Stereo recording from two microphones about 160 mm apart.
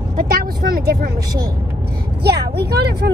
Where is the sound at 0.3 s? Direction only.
70° right (ahead or behind).